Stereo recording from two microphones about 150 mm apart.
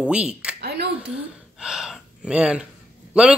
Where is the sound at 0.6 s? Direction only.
90° right.